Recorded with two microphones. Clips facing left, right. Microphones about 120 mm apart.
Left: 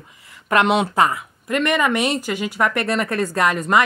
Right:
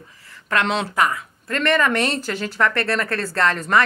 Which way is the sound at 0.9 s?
25° left (ahead or behind).